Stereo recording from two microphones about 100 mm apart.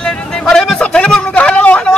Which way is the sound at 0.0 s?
10° left (ahead or behind).